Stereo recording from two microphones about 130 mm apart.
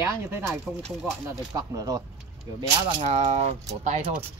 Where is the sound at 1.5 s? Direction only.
30° right (ahead or behind).